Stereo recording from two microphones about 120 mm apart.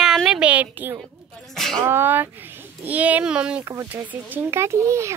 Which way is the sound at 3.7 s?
25° right (ahead or behind).